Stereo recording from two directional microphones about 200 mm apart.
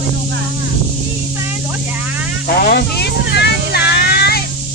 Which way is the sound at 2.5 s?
50° left (ahead or behind).